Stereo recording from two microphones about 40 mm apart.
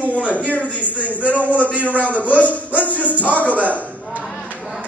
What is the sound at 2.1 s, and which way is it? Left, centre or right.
Speech, left.